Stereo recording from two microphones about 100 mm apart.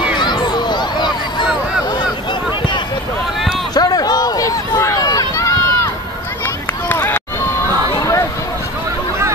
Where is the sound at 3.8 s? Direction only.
40° left (ahead or behind); by 7.2 s 20° left (ahead or behind).